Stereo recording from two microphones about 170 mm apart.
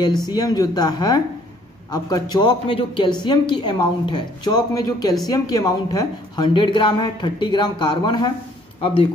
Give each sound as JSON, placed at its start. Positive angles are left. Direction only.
{"t": 0.2, "sound": "a woman's voice", "side_deg": 25}